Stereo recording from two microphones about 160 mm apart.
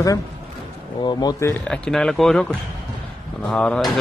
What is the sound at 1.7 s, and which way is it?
Speech, 5° left (ahead or behind).